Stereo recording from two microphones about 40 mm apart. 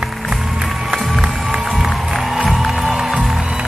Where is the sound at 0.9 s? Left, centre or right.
Centre.